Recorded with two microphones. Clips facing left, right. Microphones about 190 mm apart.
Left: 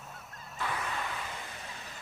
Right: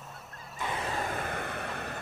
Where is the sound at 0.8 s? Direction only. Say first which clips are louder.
Right 5 dB; 40° right (ahead or behind); by 2.0 s 60° right (ahead or behind).